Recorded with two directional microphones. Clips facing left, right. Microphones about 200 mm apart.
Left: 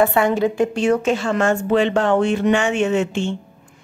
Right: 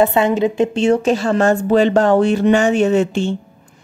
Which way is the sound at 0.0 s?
20° right (ahead or behind).